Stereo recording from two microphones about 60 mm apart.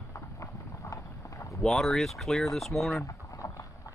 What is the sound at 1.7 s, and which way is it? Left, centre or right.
Speech, centre.